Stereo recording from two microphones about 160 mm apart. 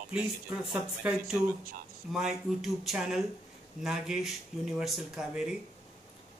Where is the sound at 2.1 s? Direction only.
Centre (ahead or behind).